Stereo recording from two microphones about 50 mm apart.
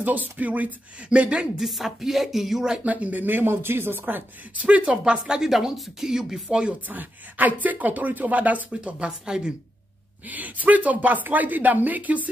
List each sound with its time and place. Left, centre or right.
0.0 s speech: right
1.6 s speech: centre
2.8 s speech: right
4.6 s speech: right
6.9 s speech: right
8.8 s speech: centre
10.2 s speech: right